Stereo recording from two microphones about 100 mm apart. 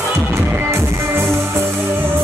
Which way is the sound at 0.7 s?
30° right (ahead or behind).